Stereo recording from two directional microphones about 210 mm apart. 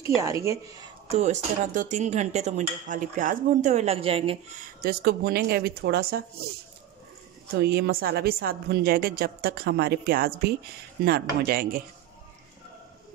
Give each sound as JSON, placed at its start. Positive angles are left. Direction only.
{"t": 0.2, "sound": "speech", "side_deg": -15}
{"t": 1.0, "sound": "speech", "side_deg": -30}
{"t": 4.8, "sound": "a woman's voice", "side_deg": -45}
{"t": 7.5, "sound": "a woman's voice", "side_deg": -50}